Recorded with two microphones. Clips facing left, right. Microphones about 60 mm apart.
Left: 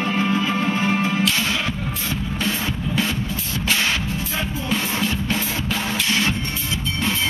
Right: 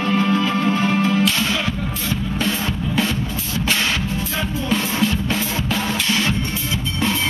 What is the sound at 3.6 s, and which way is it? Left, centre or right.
Music, centre.